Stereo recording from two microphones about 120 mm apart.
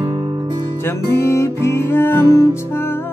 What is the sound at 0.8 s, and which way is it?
Music, 20° left (ahead or behind).